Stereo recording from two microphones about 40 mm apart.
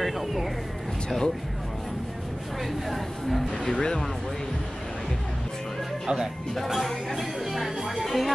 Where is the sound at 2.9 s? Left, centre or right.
Centre.